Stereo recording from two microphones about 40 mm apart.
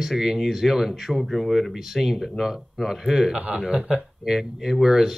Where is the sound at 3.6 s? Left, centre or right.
Centre.